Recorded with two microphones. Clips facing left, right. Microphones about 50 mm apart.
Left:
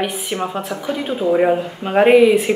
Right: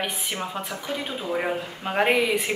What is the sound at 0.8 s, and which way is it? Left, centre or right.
Speech, centre.